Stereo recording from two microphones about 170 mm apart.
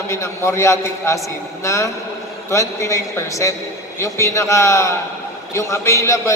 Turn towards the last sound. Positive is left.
turn(degrees=15)  # may be behind; listen again after turning